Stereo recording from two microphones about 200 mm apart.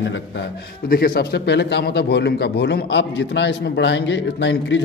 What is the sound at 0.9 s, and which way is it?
A man's voice, 50° left (ahead or behind).